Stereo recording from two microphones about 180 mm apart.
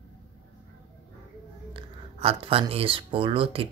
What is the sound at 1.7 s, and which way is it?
Speech, 30° right (ahead or behind).